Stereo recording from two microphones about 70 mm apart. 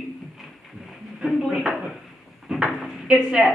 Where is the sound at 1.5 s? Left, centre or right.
Centre.